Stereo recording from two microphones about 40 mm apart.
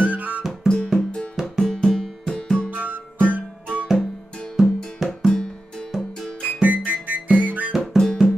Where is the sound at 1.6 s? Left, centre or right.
Centre.